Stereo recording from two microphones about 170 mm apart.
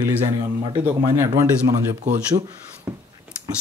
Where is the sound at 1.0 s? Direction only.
15° right (ahead or behind).